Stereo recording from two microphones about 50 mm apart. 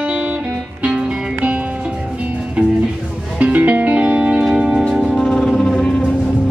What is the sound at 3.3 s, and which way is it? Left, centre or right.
Music, right.